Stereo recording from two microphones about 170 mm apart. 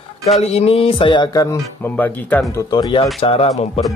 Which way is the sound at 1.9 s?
10° left (ahead or behind).